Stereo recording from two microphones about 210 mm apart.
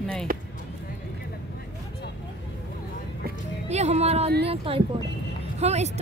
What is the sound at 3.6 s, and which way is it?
Speech, 30° right (ahead or behind).